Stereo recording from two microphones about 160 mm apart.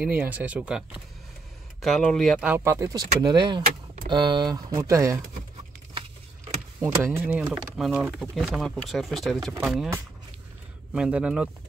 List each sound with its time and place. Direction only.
0.0 s speech: 10° right (ahead or behind)
2.4 s speech: 15° right (ahead or behind)
6.8 s speech: 15° right (ahead or behind)
10.9 s speech: 5° right (ahead or behind)